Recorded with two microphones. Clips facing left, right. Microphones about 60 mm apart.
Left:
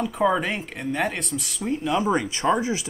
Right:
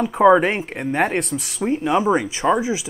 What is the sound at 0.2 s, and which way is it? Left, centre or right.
Speech, right.